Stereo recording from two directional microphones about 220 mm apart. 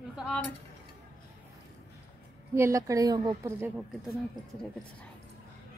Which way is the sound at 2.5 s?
15° right (ahead or behind).